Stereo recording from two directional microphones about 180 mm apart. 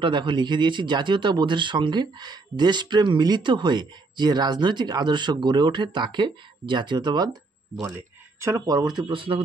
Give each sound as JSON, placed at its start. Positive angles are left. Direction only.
{"t": 0.0, "sound": "speech", "side_deg": -25}
{"t": 8.4, "sound": "speech", "side_deg": -15}